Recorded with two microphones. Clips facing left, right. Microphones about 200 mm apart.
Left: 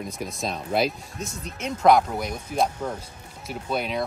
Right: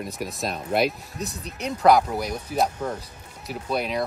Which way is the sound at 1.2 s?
35° right (ahead or behind).